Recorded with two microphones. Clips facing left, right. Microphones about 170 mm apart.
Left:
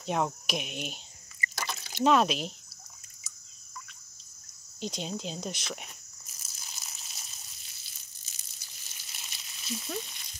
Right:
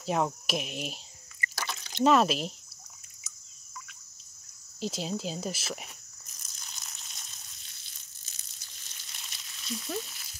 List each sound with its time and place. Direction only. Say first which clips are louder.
0.0 s insect: right 1 dB; centre (ahead or behind)
1.6 s drip: right 2 dB; 10° left (ahead or behind)
2.0 s insect: right 1 dB; centre (ahead or behind)
4.7 s a sound: right 2 dB; centre (ahead or behind)